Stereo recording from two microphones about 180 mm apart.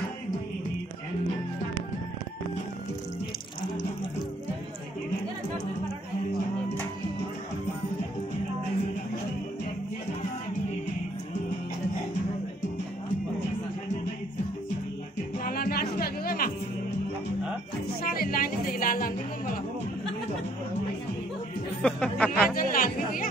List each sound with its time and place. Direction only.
15.4 s music: 55° left (ahead or behind)
18.0 s music: 55° left (ahead or behind)
21.8 s a sound: 5° left (ahead or behind)
22.7 s chatter: 50° left (ahead or behind)